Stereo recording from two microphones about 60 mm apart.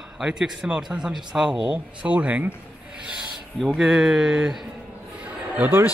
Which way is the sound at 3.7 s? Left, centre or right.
Centre.